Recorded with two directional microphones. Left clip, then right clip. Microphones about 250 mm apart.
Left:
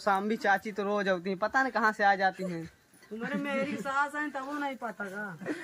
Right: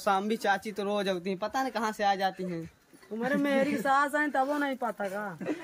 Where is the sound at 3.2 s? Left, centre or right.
Centre.